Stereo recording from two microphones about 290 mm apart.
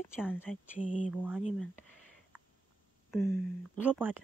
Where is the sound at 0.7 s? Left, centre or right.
Left.